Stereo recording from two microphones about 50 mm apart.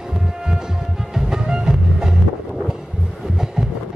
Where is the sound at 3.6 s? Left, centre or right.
Centre.